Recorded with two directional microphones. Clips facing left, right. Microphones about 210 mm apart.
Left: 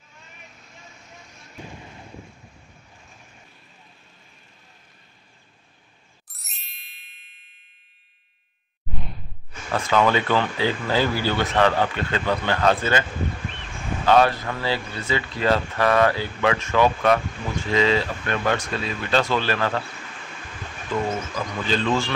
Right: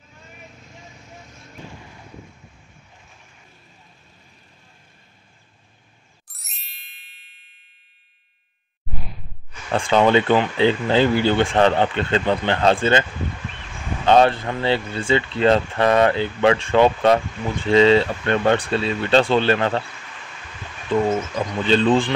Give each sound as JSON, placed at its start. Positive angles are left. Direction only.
{"t": 6.3, "sound": "ding", "side_deg": 0}
{"t": 8.9, "sound": "whoosh", "side_deg": -5}
{"t": 9.7, "sound": "speech", "side_deg": -30}
{"t": 14.0, "sound": "speech", "side_deg": -25}
{"t": 21.1, "sound": "speech", "side_deg": -25}